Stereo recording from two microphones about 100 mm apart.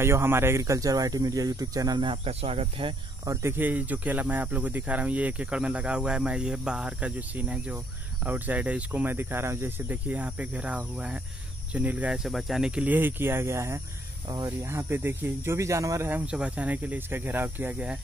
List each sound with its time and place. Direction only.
0.0 s speech: 25° right (ahead or behind)
2.0 s speech: 65° right (ahead or behind)
3.3 s speech: 25° right (ahead or behind); by 12.8 s 5° right (ahead or behind)
12.8 s speech: 20° right (ahead or behind)
16.1 s speech: 10° right (ahead or behind)